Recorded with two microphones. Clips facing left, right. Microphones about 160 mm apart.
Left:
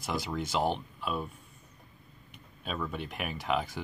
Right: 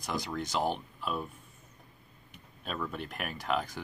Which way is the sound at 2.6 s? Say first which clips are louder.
Left 1 dB; centre (ahead or behind).